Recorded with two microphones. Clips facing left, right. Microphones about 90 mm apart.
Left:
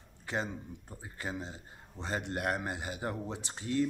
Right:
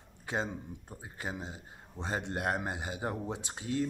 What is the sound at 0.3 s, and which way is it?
Speech, 20° right (ahead or behind).